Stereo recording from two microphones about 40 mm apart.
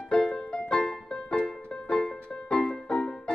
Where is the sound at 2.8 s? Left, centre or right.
Left.